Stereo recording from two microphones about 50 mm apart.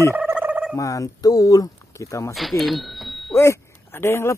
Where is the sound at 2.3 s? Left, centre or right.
Centre.